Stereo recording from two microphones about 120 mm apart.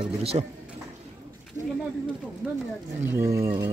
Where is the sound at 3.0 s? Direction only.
25° right (ahead or behind).